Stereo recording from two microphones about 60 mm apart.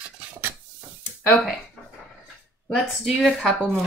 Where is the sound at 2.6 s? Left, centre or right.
Centre.